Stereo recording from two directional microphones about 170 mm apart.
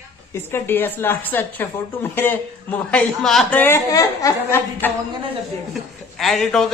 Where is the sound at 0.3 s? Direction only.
15° left (ahead or behind).